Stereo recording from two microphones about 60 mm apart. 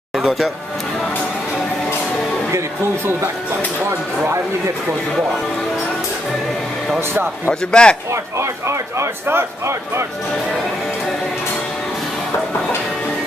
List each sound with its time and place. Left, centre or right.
0.1 s speech: centre
7.7 s a man's voice: centre
8.1 s speech: right